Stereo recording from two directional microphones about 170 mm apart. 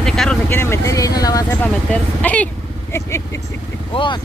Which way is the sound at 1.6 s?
10° left (ahead or behind).